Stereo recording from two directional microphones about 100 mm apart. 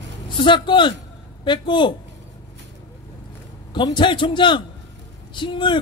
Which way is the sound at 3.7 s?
50° left (ahead or behind).